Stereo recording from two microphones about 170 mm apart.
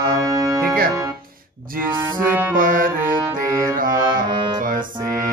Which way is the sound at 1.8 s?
55° right (ahead or behind).